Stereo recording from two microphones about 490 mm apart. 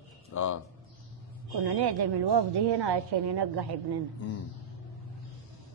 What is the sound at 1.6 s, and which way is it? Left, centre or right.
A woman's voice, right.